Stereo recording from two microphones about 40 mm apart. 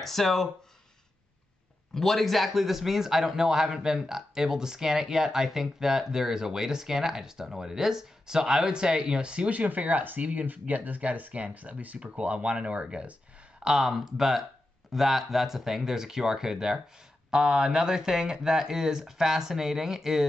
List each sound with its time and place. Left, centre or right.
0.0 s speech: centre
2.0 s a man's voice: centre; by 9.5 s right
9.5 s speech: right
13.7 s a man's voice: centre